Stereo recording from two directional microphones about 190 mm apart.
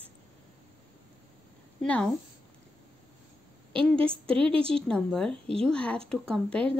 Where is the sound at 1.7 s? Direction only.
5° left (ahead or behind).